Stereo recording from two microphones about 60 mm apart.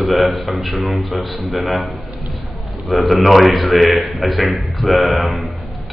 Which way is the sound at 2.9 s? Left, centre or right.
Centre.